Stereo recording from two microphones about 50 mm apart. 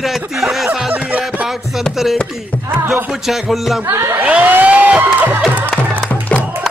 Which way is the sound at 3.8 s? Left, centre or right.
Right.